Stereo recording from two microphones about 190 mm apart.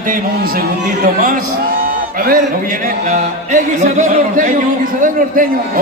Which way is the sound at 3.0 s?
40° right (ahead or behind).